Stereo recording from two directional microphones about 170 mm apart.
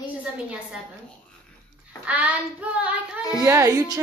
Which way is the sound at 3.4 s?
20° right (ahead or behind).